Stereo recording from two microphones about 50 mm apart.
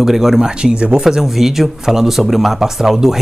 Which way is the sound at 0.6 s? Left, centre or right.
Centre.